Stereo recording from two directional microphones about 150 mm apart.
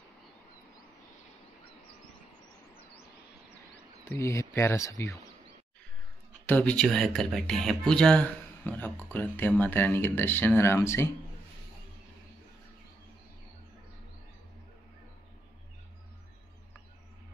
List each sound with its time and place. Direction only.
4.1 s speech: 20° left (ahead or behind)
6.4 s speech: 10° left (ahead or behind)